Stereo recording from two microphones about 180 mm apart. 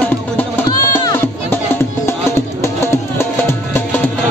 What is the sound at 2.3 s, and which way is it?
Music, 15° left (ahead or behind).